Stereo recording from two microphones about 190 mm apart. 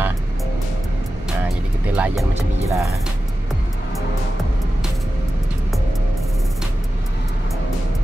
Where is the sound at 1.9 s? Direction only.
5° right (ahead or behind).